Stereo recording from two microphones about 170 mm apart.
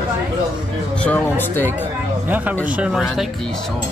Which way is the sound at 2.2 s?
10° right (ahead or behind).